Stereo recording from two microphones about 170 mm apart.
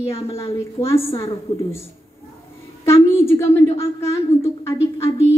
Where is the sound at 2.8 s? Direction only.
15° left (ahead or behind).